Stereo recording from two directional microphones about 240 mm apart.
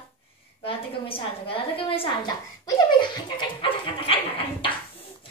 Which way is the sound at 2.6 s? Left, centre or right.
Centre.